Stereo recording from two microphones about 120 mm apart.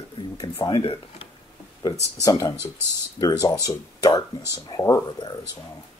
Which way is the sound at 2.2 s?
30° left (ahead or behind).